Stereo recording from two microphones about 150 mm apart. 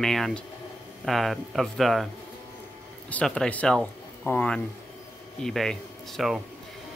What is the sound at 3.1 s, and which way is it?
Speech, 5° left (ahead or behind).